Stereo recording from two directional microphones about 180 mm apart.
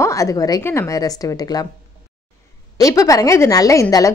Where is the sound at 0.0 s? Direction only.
15° left (ahead or behind).